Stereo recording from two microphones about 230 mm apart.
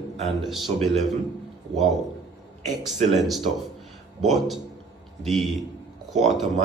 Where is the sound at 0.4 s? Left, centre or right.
Centre.